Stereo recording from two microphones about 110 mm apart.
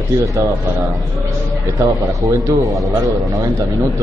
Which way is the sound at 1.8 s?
30° right (ahead or behind).